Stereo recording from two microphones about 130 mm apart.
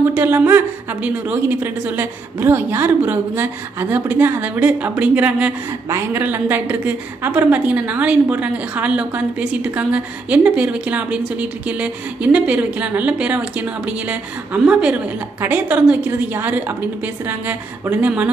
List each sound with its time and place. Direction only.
0.1 s a woman's voice: 15° right (ahead or behind)